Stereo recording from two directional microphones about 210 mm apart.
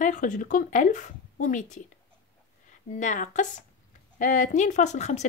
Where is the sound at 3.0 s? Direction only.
35° left (ahead or behind).